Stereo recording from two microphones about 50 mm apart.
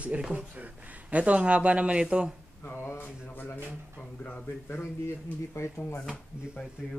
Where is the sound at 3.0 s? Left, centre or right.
Left.